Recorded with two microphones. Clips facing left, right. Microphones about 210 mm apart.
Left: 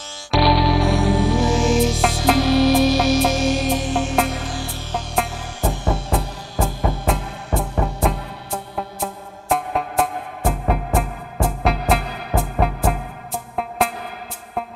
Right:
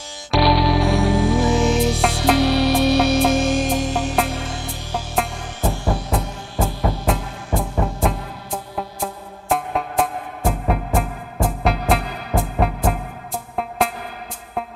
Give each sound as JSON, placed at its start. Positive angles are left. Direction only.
{"t": 0.3, "sound": "music", "side_deg": 0}
{"t": 3.3, "sound": "music", "side_deg": -50}
{"t": 4.1, "sound": "music", "side_deg": 0}
{"t": 4.5, "sound": "music", "side_deg": -20}
{"t": 4.9, "sound": "music", "side_deg": 0}
{"t": 5.9, "sound": "music", "side_deg": 25}
{"t": 6.5, "sound": "music", "side_deg": 0}